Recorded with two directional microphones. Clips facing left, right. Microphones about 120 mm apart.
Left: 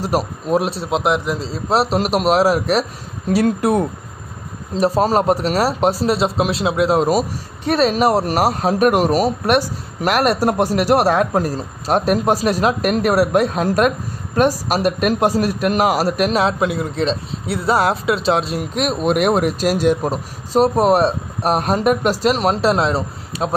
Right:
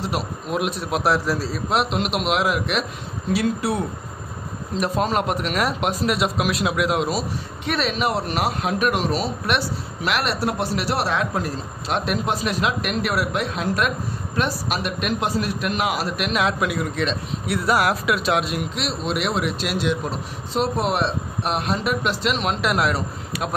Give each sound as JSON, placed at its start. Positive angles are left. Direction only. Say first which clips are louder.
{"t": 0.0, "sound": "speech", "louder": "left 6 dB", "side_deg": 40}
{"t": 3.3, "sound": "speech", "louder": "left 7 dB", "side_deg": 50}
{"t": 4.7, "sound": "speech", "louder": "left 6 dB", "side_deg": 35}
{"t": 7.1, "sound": "speech", "louder": "left 7 dB", "side_deg": 40}
{"t": 18.8, "sound": "speech", "louder": "left 11 dB", "side_deg": 50}